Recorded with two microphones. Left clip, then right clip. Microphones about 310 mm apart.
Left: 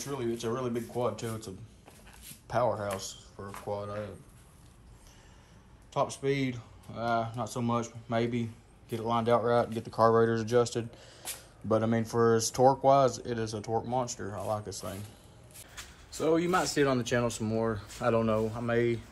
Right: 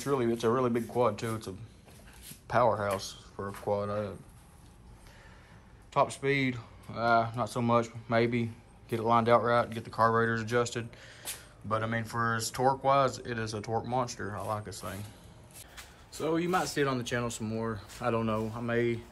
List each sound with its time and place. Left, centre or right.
0.0 s speech: centre
5.9 s speech: centre
15.7 s speech: centre